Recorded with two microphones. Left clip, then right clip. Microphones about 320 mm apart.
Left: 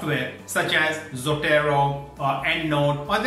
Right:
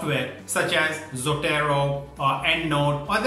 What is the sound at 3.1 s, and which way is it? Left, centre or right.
Speech, centre.